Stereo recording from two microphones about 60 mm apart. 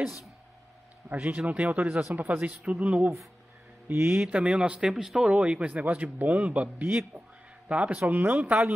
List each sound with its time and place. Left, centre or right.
1.0 s speech: right
3.9 s speech: right
4.3 s speech: centre